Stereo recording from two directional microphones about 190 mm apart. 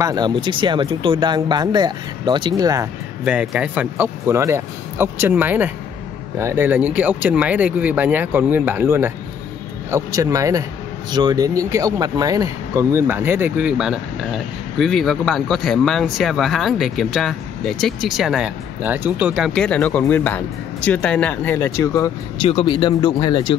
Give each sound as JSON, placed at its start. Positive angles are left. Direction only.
{"t": 0.0, "sound": "speech", "side_deg": -20}
{"t": 3.3, "sound": "speech", "side_deg": -5}
{"t": 22.4, "sound": "speech", "side_deg": 30}